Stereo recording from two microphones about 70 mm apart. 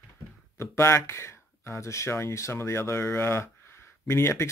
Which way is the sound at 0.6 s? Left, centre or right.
Left.